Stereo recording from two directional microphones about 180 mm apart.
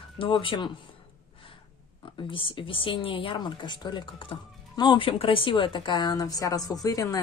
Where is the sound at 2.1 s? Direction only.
30° left (ahead or behind).